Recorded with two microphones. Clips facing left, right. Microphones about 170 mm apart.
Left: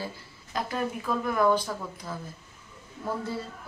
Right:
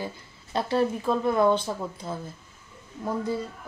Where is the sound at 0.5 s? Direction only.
30° right (ahead or behind).